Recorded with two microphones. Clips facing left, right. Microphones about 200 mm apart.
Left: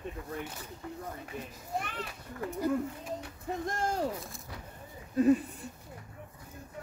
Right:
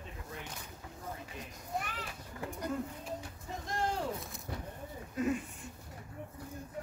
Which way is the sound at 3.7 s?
45° left (ahead or behind).